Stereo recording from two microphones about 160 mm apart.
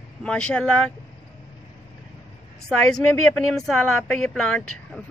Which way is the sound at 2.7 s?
5° left (ahead or behind).